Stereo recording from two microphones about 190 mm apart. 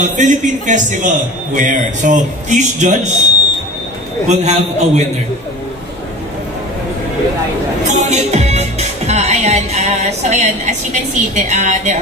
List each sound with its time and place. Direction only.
0.0 s speech: 40° right (ahead or behind)
4.3 s speech: 35° right (ahead or behind)
7.8 s music: 40° right (ahead or behind)